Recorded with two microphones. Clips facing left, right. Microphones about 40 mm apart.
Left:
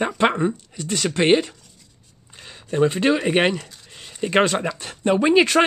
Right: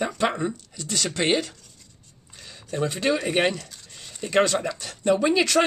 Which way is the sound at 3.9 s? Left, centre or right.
Left.